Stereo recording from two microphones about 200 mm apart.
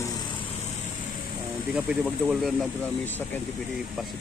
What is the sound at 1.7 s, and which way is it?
Speech, centre (ahead or behind).